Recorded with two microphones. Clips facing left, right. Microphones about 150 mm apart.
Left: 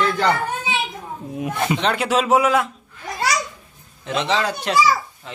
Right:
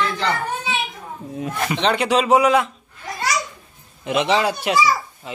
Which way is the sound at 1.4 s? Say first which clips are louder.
Left 2 dB; 20° left (ahead or behind).